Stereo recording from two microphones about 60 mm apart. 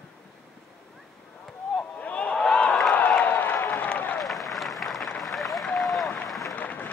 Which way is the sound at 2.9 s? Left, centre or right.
Left.